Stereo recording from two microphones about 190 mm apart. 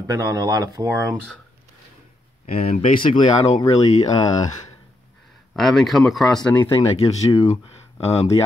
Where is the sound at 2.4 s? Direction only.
35° left (ahead or behind).